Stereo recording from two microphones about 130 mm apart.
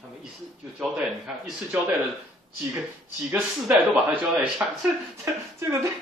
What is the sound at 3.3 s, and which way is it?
Speech, 15° right (ahead or behind).